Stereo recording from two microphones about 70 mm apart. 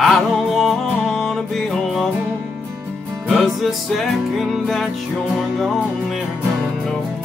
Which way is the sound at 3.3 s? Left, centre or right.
Centre.